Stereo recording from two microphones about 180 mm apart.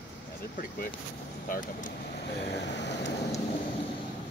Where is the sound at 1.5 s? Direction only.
50° left (ahead or behind).